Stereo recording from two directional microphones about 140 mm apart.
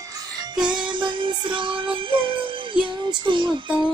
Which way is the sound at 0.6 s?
35° right (ahead or behind).